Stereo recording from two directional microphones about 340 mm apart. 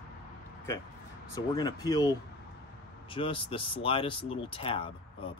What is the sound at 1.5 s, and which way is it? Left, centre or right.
Speech, centre.